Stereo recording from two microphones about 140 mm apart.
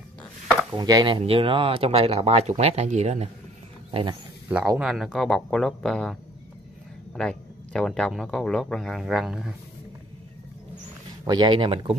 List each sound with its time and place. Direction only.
0.7 s speech: 30° right (ahead or behind); by 3.3 s 50° right (ahead or behind)
3.9 s a man's voice: 35° right (ahead or behind)
4.5 s a man's voice: 10° right (ahead or behind)
7.2 s a man's voice: 5° left (ahead or behind)
11.2 s speech: 30° right (ahead or behind)